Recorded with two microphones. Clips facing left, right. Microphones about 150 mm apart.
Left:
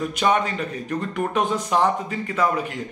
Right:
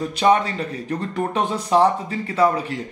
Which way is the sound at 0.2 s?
35° right (ahead or behind).